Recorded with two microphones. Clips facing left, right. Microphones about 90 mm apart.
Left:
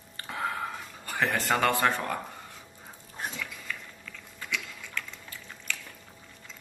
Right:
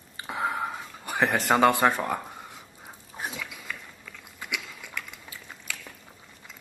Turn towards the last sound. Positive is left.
turn(degrees=-15)  # may be behind; listen again after turning